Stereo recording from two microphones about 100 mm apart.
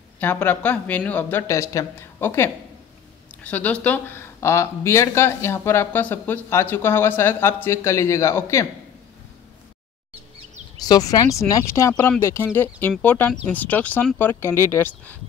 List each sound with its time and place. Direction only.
0.2 s speech: 20° left (ahead or behind)
1.5 s a woman's voice: 35° left (ahead or behind)
10.9 s speech: 40° left (ahead or behind); by 15.1 s 25° left (ahead or behind)